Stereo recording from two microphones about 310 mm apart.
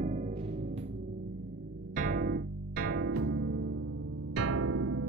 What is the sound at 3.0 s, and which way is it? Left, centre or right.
Music, right.